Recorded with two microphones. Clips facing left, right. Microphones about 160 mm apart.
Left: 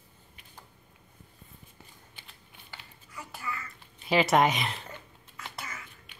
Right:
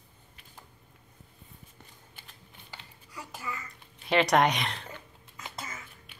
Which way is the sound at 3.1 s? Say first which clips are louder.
Even; 20° right (ahead or behind).